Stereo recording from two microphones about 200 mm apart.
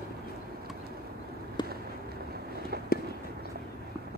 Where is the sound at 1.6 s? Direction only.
20° left (ahead or behind).